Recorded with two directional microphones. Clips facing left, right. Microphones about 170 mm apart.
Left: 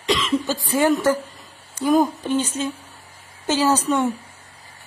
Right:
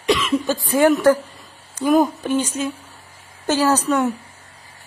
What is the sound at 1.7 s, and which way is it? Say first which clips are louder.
Speech: right 2 dB; 10° right (ahead or behind).